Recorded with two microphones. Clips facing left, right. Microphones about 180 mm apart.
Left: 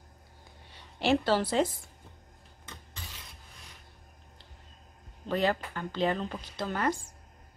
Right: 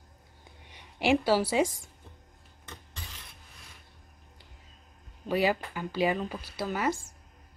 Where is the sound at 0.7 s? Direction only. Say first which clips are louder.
Right 1 dB; 15° right (ahead or behind).